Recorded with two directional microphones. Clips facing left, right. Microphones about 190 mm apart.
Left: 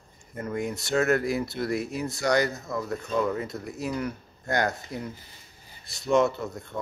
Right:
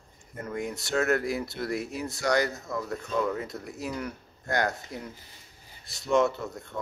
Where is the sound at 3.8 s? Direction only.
20° left (ahead or behind).